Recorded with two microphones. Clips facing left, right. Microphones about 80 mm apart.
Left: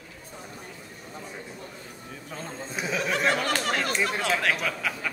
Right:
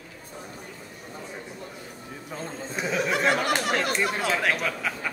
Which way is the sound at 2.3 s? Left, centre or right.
Centre.